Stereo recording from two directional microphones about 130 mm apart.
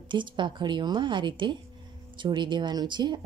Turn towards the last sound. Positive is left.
turn(degrees=-35)  # may be behind; listen again after turning